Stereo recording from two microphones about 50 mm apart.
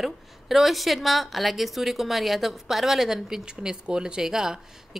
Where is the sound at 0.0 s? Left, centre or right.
Centre.